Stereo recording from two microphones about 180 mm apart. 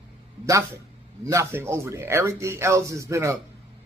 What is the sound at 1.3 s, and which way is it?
Speech, 15° right (ahead or behind).